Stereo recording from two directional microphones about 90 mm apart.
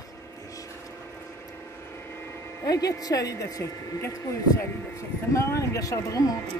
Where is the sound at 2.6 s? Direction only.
40° left (ahead or behind).